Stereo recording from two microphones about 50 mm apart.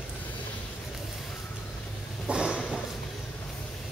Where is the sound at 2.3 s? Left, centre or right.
Right.